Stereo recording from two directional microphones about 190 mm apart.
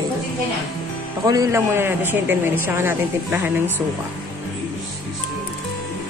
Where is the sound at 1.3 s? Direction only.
15° right (ahead or behind).